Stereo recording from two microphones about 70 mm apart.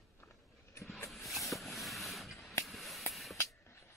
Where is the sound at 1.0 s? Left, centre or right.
Centre.